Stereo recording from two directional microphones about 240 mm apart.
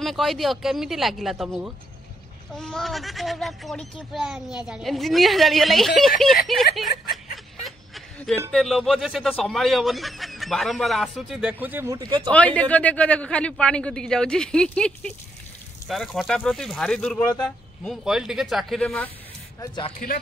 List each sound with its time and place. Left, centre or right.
0.0 s speech: centre
6.7 s snicker: centre
7.6 s a sound: centre
8.5 s speech: centre
12.3 s speech: centre
19.6 s speech: centre